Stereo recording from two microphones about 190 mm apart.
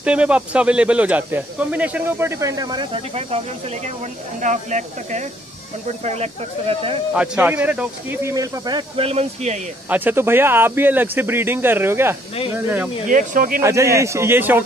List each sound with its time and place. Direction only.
0.0 s speech: 5° right (ahead or behind); by 3.3 s 30° right (ahead or behind)
4.4 s speech: 40° right (ahead or behind)
7.2 s speech: 5° right (ahead or behind); by 9.6 s 35° right (ahead or behind)
9.8 s speech: 10° right (ahead or behind)
13.1 s speech: 45° right (ahead or behind)
13.6 s speech: 15° right (ahead or behind)